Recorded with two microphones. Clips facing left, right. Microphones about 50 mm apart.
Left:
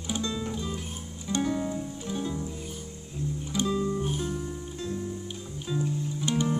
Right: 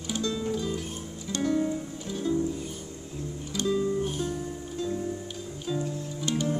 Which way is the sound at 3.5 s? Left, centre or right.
Left.